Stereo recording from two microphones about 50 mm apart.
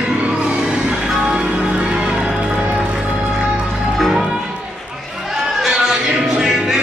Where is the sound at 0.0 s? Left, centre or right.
Right.